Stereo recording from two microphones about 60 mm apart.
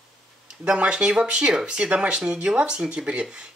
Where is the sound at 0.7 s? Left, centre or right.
Centre.